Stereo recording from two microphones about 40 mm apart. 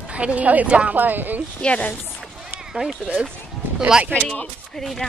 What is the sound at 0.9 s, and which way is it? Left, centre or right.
Speech, right.